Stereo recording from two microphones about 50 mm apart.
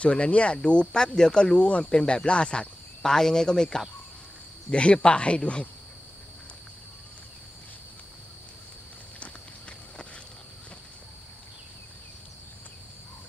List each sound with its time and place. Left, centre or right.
0.0 s speech: left
9.2 s walk: left